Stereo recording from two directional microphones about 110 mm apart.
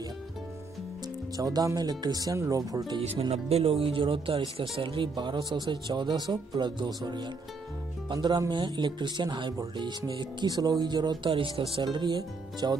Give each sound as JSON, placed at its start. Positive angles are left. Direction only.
{"t": 1.3, "sound": "speech", "side_deg": -35}
{"t": 3.0, "sound": "speech", "side_deg": -70}
{"t": 8.1, "sound": "speech", "side_deg": -35}
{"t": 11.7, "sound": "speech", "side_deg": -45}